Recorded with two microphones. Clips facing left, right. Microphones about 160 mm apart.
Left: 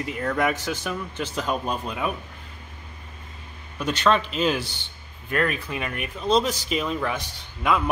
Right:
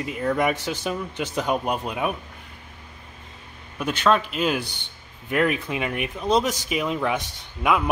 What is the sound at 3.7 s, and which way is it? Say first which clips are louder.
A man's voice: right 1 dB; 10° right (ahead or behind).